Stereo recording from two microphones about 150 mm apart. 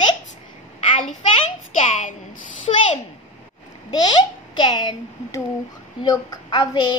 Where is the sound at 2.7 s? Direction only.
45° left (ahead or behind).